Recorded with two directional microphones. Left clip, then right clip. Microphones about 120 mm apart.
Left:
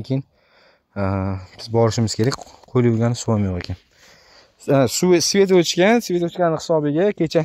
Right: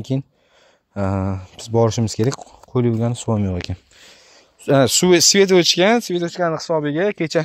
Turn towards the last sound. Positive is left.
turn(degrees=65)  # may be behind; listen again after turning